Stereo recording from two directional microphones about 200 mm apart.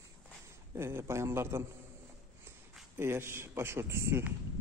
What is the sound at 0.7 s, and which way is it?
Speech, 15° right (ahead or behind).